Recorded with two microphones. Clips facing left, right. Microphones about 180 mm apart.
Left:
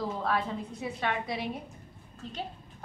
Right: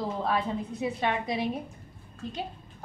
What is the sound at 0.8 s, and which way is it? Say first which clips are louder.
A woman's voice: right 4 dB; 20° right (ahead or behind).